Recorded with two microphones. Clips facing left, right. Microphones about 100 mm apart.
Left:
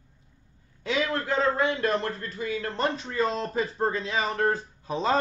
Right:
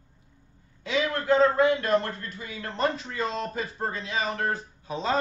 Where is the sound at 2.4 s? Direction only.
25° right (ahead or behind).